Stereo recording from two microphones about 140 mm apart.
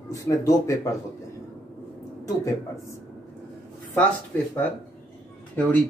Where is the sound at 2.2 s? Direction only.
20° left (ahead or behind).